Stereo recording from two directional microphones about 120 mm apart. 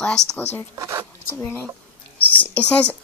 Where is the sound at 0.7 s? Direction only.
25° right (ahead or behind).